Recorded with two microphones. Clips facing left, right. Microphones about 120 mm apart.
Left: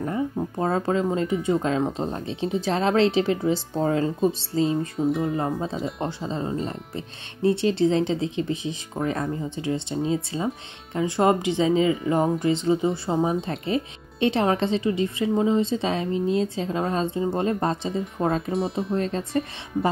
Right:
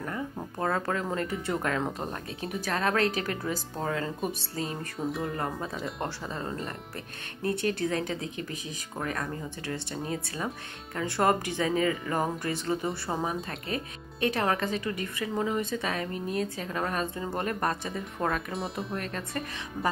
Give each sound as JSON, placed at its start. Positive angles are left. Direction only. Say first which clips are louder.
{"t": 0.6, "sound": "speech", "louder": "left 5 dB", "side_deg": 25}
{"t": 5.1, "sound": "speech", "louder": "left 8 dB", "side_deg": 0}
{"t": 5.4, "sound": "speech", "louder": "left 6 dB", "side_deg": 25}
{"t": 18.5, "sound": "speech", "louder": "left 8 dB", "side_deg": 0}
{"t": 18.9, "sound": "speech", "louder": "left 9 dB", "side_deg": 30}